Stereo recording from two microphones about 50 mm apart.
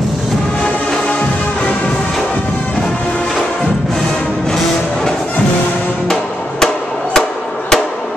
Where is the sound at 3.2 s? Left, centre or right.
Centre.